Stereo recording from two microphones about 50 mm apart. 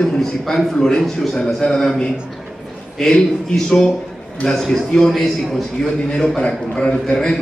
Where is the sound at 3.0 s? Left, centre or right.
Centre.